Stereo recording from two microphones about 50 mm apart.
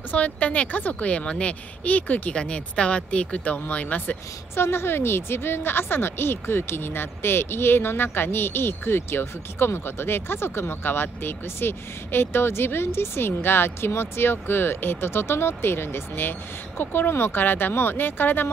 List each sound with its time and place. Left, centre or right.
0.1 s speech: left
2.3 s speech: centre
4.6 s a woman's voice: left